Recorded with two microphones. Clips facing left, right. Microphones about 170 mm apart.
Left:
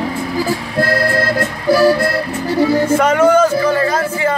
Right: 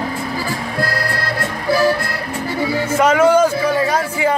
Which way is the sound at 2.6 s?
45° left (ahead or behind).